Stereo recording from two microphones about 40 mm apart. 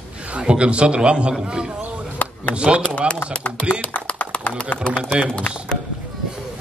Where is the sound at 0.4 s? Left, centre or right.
Right.